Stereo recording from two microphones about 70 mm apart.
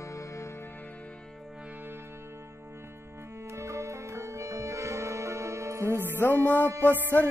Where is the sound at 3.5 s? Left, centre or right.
Right.